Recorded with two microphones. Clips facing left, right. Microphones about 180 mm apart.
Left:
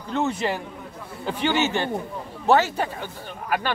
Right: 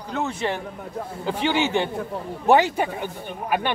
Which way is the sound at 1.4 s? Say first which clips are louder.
Right 1 dB; 15° right (ahead or behind).